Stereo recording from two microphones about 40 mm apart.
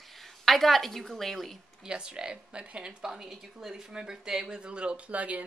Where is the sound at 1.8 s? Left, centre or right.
Right.